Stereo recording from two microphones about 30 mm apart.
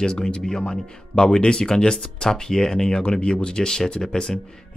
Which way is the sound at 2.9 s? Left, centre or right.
Left.